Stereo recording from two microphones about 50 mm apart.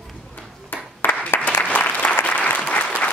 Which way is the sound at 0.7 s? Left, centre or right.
Left.